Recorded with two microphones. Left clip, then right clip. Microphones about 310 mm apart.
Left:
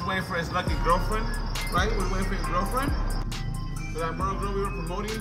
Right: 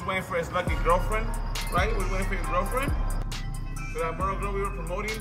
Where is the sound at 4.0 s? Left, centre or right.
Centre.